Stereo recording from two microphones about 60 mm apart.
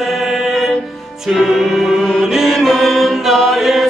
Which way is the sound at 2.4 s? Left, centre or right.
Centre.